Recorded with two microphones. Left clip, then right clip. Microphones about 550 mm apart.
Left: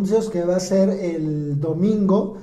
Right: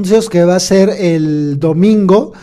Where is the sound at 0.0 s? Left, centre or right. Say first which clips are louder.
Right 10 dB; right.